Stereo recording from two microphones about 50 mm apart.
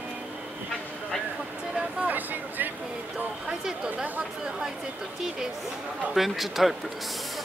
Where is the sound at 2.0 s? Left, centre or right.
Right.